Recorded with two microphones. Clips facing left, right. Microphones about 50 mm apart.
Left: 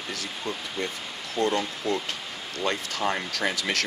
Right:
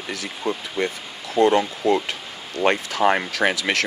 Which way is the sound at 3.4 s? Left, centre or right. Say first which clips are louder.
Right 6 dB; right.